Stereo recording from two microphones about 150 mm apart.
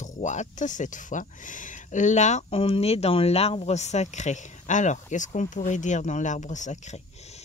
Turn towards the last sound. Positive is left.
turn(degrees=45)  # may be behind; listen again after turning